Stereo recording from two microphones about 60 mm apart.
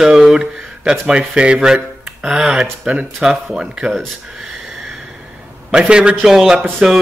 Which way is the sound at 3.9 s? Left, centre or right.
Centre.